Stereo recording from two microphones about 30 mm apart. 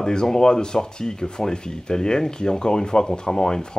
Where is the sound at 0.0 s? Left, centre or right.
Left.